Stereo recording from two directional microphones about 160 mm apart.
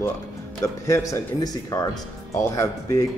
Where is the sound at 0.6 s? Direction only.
20° left (ahead or behind).